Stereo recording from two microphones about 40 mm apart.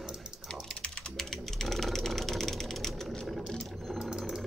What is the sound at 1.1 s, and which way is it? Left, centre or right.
Ratchet, centre.